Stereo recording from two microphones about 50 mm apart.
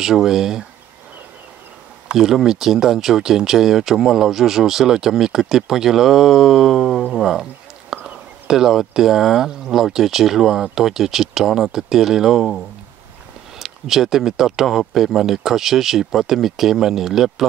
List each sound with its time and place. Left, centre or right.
0.0 s speech: centre
2.0 s speech: centre
7.9 s whispering: centre
8.5 s speech: centre